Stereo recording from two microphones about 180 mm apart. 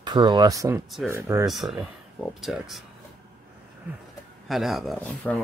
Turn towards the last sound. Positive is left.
turn(degrees=5)  # may be behind; listen again after turning